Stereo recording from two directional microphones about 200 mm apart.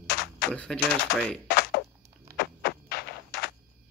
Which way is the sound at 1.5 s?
50° left (ahead or behind).